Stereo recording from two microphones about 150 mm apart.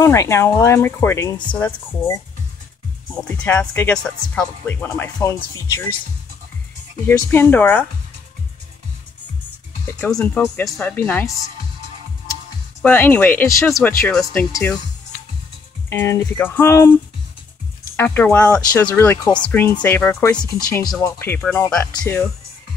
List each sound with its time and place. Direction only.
0.0 s speech: 20° left (ahead or behind)
3.1 s speech: 10° left (ahead or behind)
7.1 s speech: 15° left (ahead or behind)
9.9 s speech: 15° left (ahead or behind)
12.8 s speech: 10° left (ahead or behind)
15.9 s speech: 15° left (ahead or behind)
20.3 s speech: 30° left (ahead or behind)
21.0 s speech: 15° left (ahead or behind)